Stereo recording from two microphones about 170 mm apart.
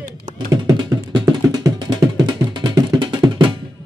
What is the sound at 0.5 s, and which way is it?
Computer keyboard, 20° right (ahead or behind).